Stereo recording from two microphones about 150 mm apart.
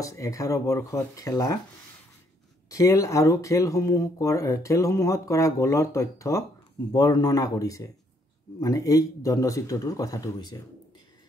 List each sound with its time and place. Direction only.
0.0 s speech: 20° left (ahead or behind)
2.7 s speech: 20° left (ahead or behind)